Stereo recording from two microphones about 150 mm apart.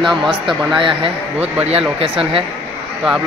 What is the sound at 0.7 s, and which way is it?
Speech, 35° right (ahead or behind).